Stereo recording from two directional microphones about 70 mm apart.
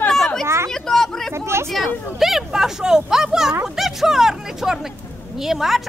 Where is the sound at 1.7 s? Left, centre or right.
Centre.